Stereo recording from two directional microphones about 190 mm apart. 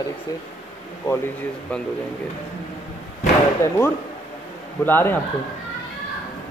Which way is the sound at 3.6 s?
15° left (ahead or behind).